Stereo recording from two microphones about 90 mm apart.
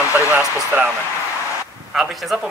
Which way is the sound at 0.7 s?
20° right (ahead or behind).